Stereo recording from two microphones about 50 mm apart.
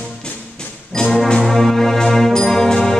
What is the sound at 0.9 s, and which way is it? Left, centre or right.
Brass instrument, centre.